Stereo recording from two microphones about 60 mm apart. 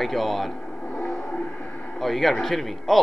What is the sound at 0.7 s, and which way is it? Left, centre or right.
Vehicle, left.